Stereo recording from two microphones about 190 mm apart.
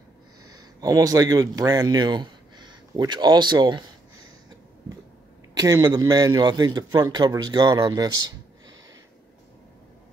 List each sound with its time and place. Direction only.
0.6 s speech: 20° right (ahead or behind)
5.5 s a man's voice: 20° right (ahead or behind)